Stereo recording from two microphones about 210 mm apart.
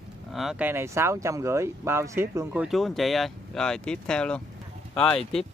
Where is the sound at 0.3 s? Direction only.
Centre (ahead or behind).